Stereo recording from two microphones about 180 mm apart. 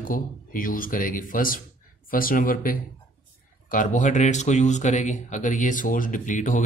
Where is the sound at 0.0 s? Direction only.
50° left (ahead or behind).